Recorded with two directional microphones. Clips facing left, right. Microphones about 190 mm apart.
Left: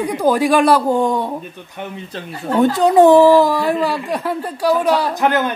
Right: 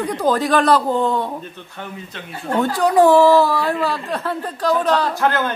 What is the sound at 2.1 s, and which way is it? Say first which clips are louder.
Speech: left 6 dB; 35° left (ahead or behind).